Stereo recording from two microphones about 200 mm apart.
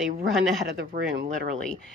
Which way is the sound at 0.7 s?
50° right (ahead or behind).